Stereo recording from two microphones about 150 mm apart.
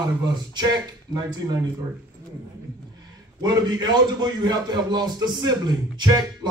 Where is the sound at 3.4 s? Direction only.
30° right (ahead or behind).